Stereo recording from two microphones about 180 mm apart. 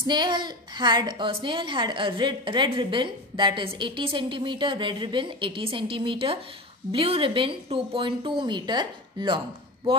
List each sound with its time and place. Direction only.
0.0 s a woman's voice: 25° right (ahead or behind)